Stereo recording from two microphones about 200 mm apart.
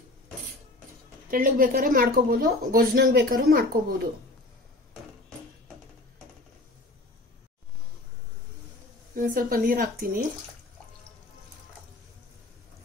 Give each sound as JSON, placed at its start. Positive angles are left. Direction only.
{"t": 1.3, "sound": "speech", "side_deg": -45}
{"t": 9.1, "sound": "speech", "side_deg": -45}